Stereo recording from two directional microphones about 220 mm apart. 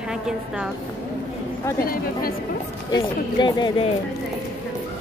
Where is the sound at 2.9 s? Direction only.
20° left (ahead or behind).